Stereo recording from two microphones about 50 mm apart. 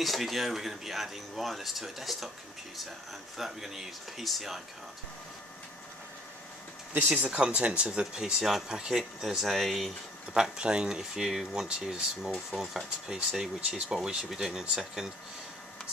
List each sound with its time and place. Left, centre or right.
0.0 s speech: centre
3.3 s speech: centre
7.2 s speech: right; by 9.9 s centre
10.3 s speech: centre
13.6 s speech: right
13.8 s speech: centre